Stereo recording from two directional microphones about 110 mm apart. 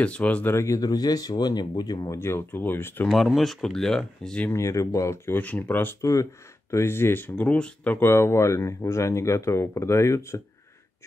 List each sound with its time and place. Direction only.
0.0 s speech: 10° left (ahead or behind); by 2.1 s 35° left (ahead or behind)
2.1 s speech: 20° left (ahead or behind)
3.1 s speech: centre (ahead or behind)
4.5 s speech: 25° left (ahead or behind)
5.9 s speech: 30° left (ahead or behind)